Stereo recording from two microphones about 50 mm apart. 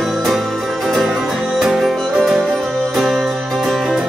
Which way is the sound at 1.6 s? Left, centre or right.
Centre.